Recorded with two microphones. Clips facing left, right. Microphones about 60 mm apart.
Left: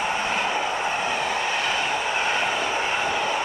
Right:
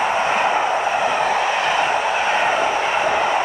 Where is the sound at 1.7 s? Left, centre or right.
Right.